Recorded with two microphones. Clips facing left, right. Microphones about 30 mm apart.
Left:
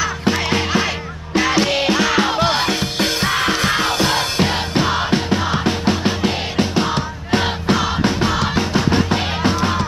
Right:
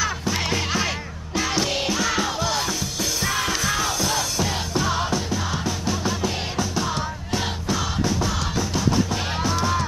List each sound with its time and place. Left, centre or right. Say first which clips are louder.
0.5 s music: left 6 dB; left